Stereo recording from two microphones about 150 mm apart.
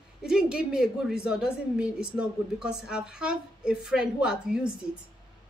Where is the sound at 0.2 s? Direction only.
5° right (ahead or behind).